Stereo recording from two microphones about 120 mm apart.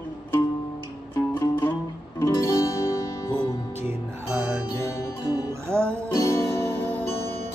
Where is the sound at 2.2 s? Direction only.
25° left (ahead or behind).